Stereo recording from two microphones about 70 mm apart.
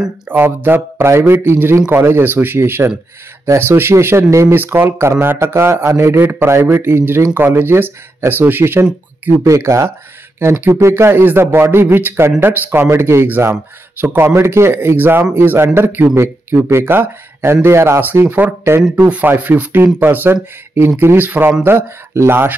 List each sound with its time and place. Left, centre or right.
0.3 s speech: right
4.6 s speech: right
9.4 s speech: right
10.4 s speech: right
10.7 s speech: right
18.8 s speech: centre
21.6 s speech: right